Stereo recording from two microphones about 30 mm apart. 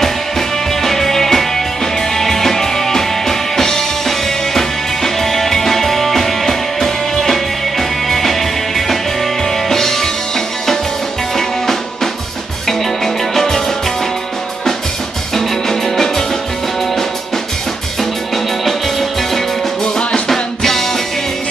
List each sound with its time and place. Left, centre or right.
0.8 s music: centre
15.3 s music: centre
18.3 s music: centre
19.8 s music: left
20.2 s music: centre